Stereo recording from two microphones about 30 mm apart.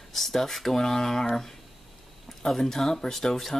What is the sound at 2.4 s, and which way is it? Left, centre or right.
Speech, centre.